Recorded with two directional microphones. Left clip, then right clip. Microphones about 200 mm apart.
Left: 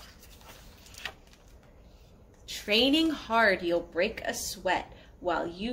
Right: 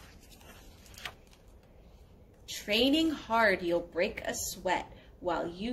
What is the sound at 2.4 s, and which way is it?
Speech, 5° left (ahead or behind).